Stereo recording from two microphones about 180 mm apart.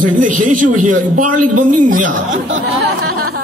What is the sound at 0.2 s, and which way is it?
A man's voice, 45° right (ahead or behind).